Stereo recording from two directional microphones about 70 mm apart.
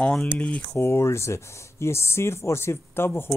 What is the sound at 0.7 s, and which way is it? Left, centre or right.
Speech, left.